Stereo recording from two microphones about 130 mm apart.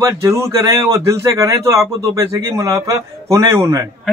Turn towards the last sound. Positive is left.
turn(degrees=-25)  # may be behind; listen again after turning